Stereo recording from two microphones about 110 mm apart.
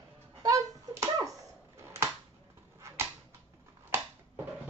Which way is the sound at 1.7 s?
25° right (ahead or behind).